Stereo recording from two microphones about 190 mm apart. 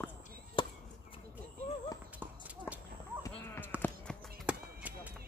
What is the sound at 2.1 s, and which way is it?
Clip-clop, 10° right (ahead or behind).